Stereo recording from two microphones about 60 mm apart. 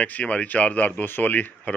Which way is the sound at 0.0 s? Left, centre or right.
Left.